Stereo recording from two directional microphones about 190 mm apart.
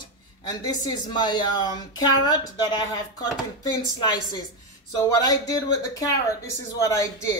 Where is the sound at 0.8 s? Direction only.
25° left (ahead or behind).